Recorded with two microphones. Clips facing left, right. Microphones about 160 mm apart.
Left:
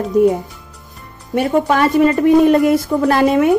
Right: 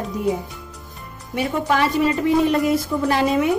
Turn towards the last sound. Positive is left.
turn(degrees=55)  # may be behind; listen again after turning